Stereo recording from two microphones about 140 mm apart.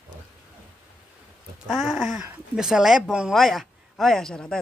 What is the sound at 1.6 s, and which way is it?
Speech, centre (ahead or behind).